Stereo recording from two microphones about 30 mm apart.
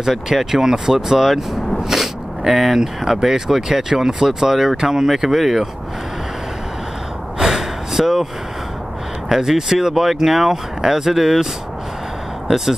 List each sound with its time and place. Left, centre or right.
0.0 s speech: centre
2.0 s speech: centre
7.3 s gasp: centre
9.3 s speech: centre
12.4 s speech: centre